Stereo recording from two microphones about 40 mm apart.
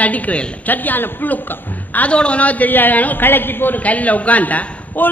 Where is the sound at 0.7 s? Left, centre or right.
Left.